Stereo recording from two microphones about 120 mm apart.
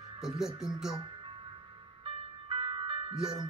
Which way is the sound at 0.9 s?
40° right (ahead or behind).